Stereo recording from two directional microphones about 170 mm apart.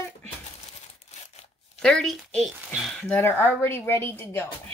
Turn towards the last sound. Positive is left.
turn(degrees=15)  # may be behind; listen again after turning